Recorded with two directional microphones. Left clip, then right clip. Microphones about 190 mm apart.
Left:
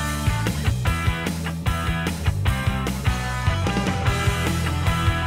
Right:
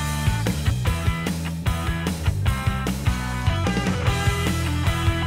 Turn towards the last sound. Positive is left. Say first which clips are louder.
# left 1 dB
turn(degrees=0)  # may be behind; listen again after turning